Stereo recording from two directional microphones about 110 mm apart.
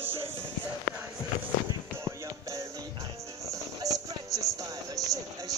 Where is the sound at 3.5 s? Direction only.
30° right (ahead or behind).